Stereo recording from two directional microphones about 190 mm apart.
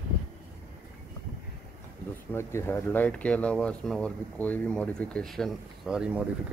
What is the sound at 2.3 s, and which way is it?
Speech, 15° left (ahead or behind).